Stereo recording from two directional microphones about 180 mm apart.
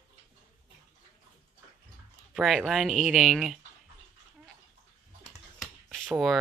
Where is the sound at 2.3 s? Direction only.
Centre (ahead or behind).